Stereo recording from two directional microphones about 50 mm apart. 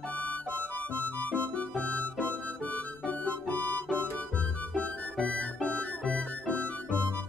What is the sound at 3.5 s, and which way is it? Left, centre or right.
Harmonica, left.